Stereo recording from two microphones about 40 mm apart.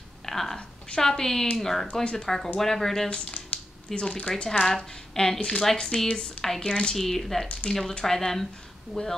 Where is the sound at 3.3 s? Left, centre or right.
Left.